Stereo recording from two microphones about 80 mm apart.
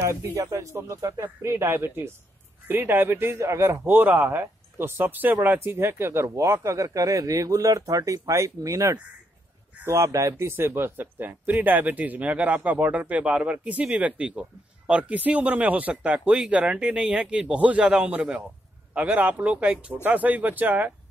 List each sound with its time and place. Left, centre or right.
0.0 s speech: right
3.8 s speech: right